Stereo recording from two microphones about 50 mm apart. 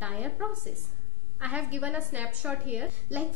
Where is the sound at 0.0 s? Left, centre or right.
Right.